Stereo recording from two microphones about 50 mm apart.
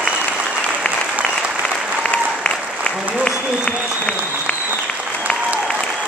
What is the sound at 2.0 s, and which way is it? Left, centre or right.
Applause, left.